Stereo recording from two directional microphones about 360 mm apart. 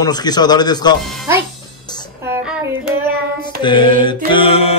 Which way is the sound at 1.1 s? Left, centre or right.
Centre.